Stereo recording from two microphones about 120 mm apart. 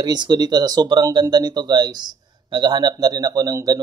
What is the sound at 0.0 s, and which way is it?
Speech, 35° right (ahead or behind).